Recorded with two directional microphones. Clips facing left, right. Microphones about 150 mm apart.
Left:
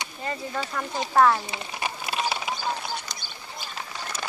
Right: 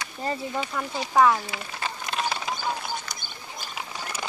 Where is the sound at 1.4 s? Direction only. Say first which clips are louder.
Left 1 dB; 20° left (ahead or behind).